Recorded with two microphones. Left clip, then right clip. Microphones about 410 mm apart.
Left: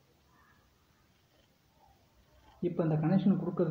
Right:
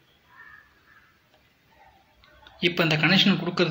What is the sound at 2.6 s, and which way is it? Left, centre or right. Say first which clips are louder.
A man's voice: right 11 dB; left.